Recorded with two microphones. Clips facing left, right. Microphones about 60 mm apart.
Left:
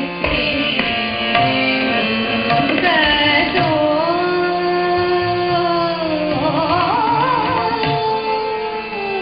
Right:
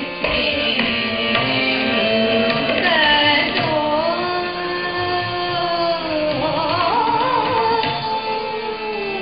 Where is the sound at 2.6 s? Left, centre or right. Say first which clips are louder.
Left 2 dB; left.